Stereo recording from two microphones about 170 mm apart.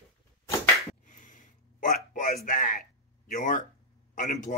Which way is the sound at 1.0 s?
50° left (ahead or behind).